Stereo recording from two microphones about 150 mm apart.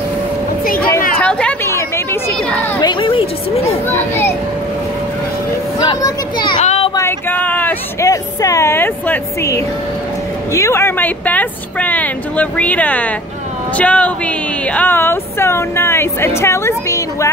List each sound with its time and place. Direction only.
1.2 s a sound: 5° left (ahead or behind)
2.8 s speech: 30° left (ahead or behind)
3.8 s speech: 15° left (ahead or behind)
5.8 s children playing: 25° left (ahead or behind)
6.6 s a sound: 50° left (ahead or behind)
7.0 s speech: 15° left (ahead or behind)